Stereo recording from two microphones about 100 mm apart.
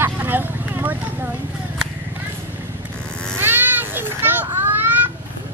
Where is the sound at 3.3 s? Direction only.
20° right (ahead or behind).